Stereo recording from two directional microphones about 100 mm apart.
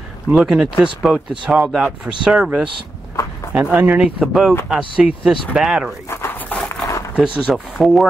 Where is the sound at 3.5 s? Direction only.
15° right (ahead or behind).